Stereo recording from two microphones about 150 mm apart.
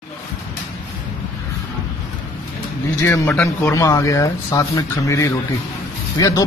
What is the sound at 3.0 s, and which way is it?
Speech, 20° left (ahead or behind).